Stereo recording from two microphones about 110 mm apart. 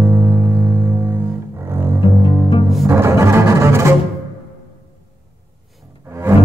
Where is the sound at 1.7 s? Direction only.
20° right (ahead or behind).